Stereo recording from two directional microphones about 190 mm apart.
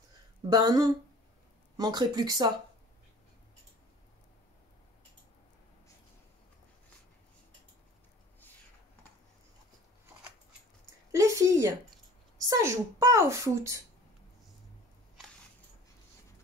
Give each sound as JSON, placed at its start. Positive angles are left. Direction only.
{"t": 0.5, "sound": "speech", "side_deg": -20}
{"t": 11.1, "sound": "a sound", "side_deg": -15}
{"t": 12.4, "sound": "a woman's voice", "side_deg": -15}